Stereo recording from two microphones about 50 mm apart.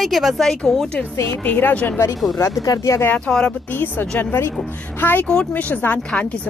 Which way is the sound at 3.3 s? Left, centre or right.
Centre.